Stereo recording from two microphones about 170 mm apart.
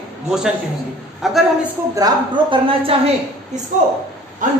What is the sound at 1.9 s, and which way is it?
A woman's voice, 25° right (ahead or behind).